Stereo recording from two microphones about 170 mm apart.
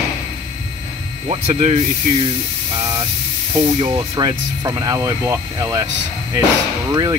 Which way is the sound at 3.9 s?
25° right (ahead or behind).